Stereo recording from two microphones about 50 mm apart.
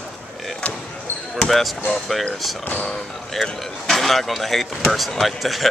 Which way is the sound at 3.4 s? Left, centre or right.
Centre.